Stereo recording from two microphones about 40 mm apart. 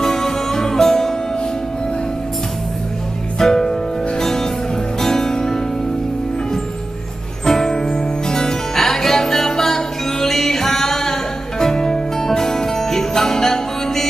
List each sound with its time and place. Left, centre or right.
0.0 s music: centre
3.3 s music: centre
7.4 s music: centre